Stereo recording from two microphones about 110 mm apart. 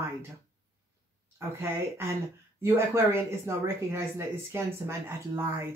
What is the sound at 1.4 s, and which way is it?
Speech, 25° right (ahead or behind).